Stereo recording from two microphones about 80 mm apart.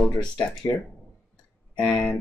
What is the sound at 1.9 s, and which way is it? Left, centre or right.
Speech, centre.